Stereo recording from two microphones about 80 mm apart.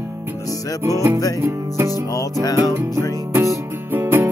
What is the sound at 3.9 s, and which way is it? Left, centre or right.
Music, right.